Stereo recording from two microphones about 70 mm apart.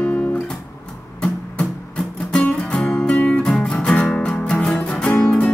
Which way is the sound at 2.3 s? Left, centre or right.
Centre.